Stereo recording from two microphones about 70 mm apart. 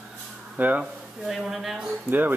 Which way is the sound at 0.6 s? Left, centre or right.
Right.